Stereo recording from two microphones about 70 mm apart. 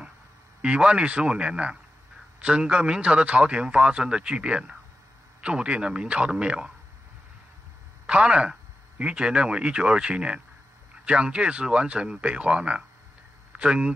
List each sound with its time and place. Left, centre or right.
0.6 s speech: centre
8.1 s speech: centre